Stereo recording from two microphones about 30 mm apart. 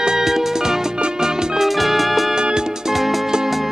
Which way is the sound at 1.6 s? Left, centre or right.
Centre.